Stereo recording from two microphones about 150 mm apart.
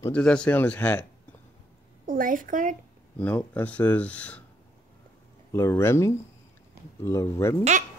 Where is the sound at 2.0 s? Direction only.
65° right (ahead or behind).